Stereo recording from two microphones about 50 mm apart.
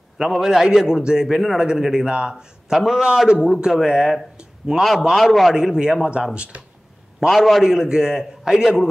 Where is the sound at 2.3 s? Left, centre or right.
Centre.